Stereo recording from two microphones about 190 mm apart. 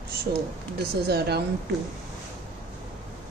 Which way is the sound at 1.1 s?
60° right (ahead or behind).